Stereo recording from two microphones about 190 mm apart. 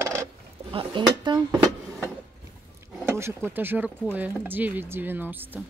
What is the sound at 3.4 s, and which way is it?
Speech, 10° right (ahead or behind).